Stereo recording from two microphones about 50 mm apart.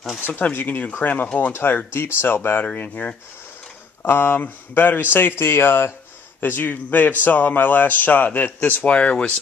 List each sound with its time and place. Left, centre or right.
0.4 s a man's voice: left
1.5 s speech: left
2.6 s a man's voice: left
4.0 s a man's voice: left
8.8 s speech: left